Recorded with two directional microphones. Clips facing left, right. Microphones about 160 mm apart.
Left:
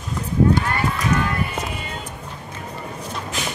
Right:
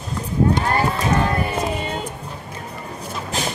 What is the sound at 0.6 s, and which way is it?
Run, 30° right (ahead or behind).